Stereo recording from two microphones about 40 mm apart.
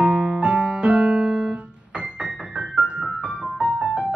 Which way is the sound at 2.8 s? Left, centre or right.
Right.